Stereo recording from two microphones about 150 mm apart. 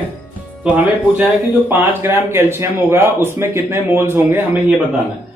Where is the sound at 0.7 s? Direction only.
10° right (ahead or behind).